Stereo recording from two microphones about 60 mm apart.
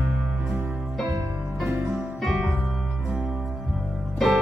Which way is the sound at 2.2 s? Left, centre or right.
Centre.